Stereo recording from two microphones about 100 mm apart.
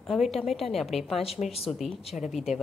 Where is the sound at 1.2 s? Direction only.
90° left.